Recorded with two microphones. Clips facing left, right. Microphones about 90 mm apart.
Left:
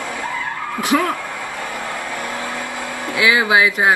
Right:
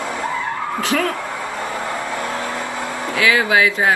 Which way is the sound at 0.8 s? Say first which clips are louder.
Left 3 dB; 20° left (ahead or behind).